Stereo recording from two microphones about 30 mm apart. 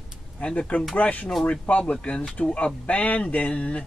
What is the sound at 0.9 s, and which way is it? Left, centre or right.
Speech, left.